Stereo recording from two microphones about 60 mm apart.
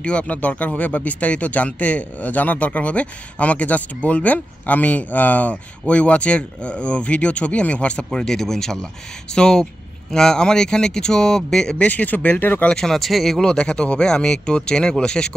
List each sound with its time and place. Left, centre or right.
0.0 s speech: centre
11.8 s speech: left
12.6 s speech: centre